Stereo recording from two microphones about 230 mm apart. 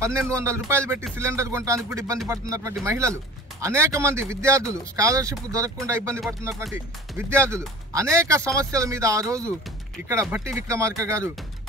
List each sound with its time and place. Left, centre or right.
0.0 s speech: centre